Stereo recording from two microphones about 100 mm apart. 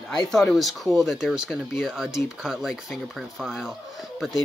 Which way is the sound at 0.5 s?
Centre (ahead or behind).